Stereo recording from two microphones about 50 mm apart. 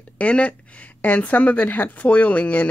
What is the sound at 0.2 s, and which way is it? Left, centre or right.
Speech, left.